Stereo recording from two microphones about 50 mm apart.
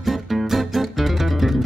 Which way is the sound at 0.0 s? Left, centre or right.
Centre.